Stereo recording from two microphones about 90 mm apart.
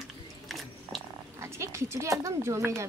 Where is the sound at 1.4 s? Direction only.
30° right (ahead or behind).